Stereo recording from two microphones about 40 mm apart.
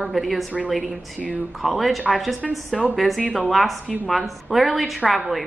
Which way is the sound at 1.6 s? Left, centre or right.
Centre.